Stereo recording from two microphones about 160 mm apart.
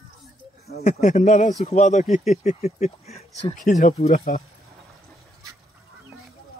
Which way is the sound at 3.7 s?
55° left (ahead or behind).